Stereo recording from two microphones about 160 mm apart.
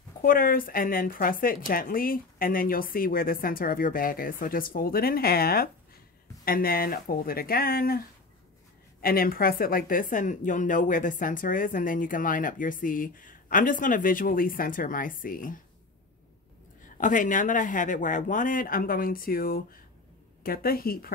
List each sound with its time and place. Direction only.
0.2 s speech: 60° left (ahead or behind)
9.0 s speech: 65° left (ahead or behind)
17.0 s speech: 55° left (ahead or behind); by 21.1 s 70° left (ahead or behind)